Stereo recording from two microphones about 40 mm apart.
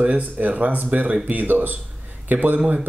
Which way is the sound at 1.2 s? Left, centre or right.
Right.